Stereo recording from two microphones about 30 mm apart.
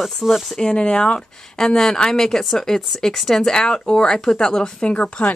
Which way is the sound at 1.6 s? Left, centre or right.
Centre.